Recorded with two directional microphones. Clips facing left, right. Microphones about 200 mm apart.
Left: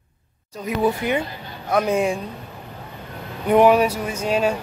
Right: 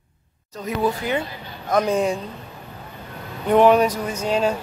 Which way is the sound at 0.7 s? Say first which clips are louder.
Left 2 dB; 15° left (ahead or behind).